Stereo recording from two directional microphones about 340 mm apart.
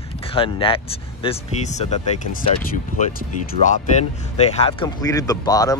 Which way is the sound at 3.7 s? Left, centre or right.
Centre.